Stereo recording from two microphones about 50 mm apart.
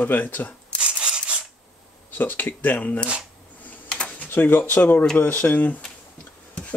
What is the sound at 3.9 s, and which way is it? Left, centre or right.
Typing, left.